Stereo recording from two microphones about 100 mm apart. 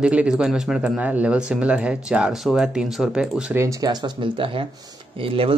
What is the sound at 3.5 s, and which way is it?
Speech, 30° right (ahead or behind).